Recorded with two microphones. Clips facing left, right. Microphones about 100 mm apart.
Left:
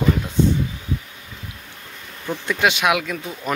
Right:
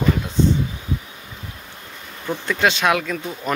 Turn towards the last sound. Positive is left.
turn(degrees=5)  # may be behind; listen again after turning